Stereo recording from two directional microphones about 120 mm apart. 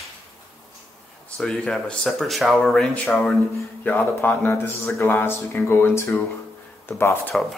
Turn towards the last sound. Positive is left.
turn(degrees=20)  # may be behind; listen again after turning